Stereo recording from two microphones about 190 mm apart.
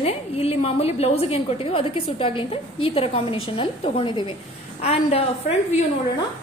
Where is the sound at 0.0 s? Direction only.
35° left (ahead or behind).